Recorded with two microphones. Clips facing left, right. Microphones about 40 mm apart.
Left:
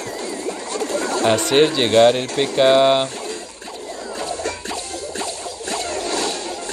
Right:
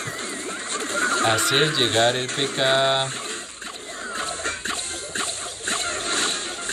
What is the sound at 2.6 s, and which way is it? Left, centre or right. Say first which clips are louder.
Speech: left 7 dB; left.